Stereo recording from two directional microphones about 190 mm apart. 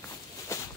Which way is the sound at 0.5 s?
15° left (ahead or behind).